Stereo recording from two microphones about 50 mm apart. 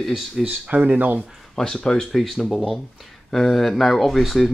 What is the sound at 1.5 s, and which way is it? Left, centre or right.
Speech, centre.